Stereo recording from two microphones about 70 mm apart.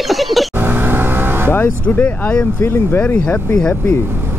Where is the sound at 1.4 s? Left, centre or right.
Left.